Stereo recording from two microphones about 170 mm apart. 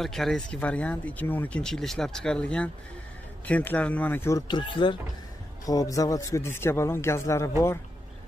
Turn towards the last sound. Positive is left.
turn(degrees=15)  # may be behind; listen again after turning